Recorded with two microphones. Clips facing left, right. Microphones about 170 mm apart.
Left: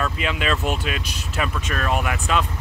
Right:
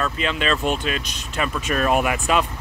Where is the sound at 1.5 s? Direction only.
10° right (ahead or behind).